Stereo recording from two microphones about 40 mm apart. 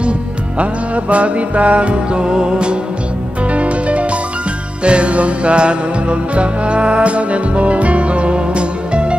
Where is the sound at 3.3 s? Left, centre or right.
Right.